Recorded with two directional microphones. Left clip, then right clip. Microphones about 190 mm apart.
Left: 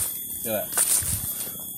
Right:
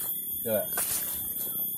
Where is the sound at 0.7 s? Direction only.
60° left (ahead or behind).